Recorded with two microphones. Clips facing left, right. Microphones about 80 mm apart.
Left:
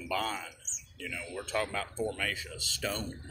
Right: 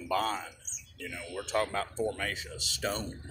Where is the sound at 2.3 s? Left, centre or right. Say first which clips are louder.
Even; right.